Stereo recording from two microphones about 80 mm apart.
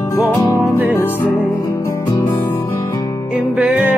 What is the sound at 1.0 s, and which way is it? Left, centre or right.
Music, left.